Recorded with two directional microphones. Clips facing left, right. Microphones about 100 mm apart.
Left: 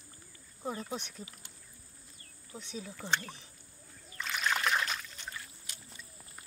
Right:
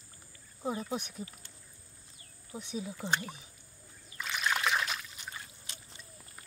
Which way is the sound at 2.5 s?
15° right (ahead or behind).